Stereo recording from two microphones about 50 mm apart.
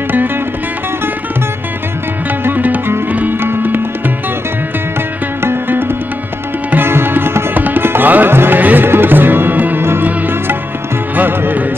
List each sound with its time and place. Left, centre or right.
2.4 s music: right
3.3 s music: right
5.4 s music: right
6.7 s sitar: right
7.6 s tabla: right
8.5 s music: right